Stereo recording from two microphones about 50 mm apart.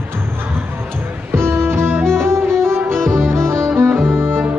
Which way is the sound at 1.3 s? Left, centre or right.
Right.